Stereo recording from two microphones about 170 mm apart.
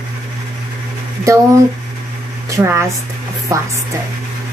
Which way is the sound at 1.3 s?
15° right (ahead or behind).